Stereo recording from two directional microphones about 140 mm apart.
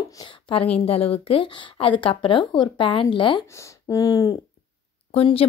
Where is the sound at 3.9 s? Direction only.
25° left (ahead or behind).